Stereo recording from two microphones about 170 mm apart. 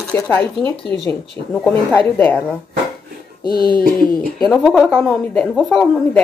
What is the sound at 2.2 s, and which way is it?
Speech, 10° left (ahead or behind).